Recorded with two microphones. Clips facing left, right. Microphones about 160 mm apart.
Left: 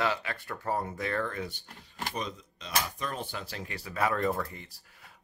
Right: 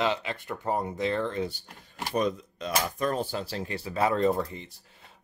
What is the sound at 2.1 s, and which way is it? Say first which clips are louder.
Speech: right 14 dB; 50° right (ahead or behind).